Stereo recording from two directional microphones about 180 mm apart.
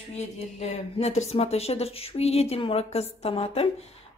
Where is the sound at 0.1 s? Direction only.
40° left (ahead or behind).